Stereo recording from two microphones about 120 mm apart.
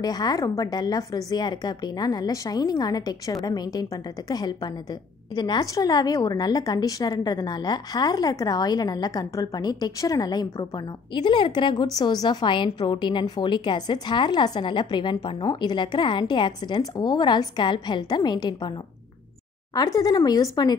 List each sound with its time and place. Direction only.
0.0 s a woman's voice: 35° left (ahead or behind)
19.7 s a woman's voice: 30° left (ahead or behind)